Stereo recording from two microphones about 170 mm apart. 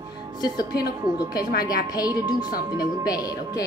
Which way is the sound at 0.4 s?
25° left (ahead or behind).